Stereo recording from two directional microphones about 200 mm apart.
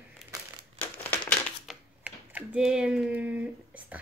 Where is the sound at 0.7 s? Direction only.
5° left (ahead or behind).